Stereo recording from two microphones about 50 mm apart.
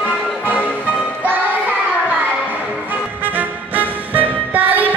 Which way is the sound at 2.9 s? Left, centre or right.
Right.